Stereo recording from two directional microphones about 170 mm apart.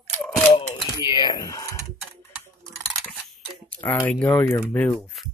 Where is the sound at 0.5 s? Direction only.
30° left (ahead or behind).